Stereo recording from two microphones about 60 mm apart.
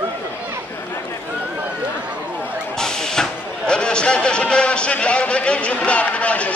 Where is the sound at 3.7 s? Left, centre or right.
Centre.